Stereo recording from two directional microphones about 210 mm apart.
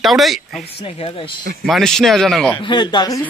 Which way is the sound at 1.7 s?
Centre (ahead or behind).